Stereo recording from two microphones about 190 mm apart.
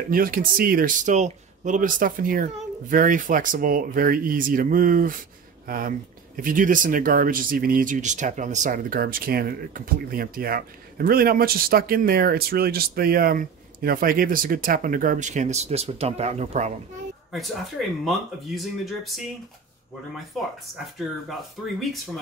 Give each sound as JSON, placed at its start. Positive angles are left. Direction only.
{"t": 0.1, "sound": "speech", "side_deg": -50}
{"t": 17.3, "sound": "speech", "side_deg": 0}
{"t": 21.3, "sound": "speech", "side_deg": 0}